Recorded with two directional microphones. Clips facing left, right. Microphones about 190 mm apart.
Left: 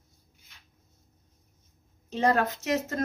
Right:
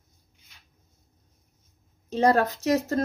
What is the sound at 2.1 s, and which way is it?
Speech, 35° right (ahead or behind).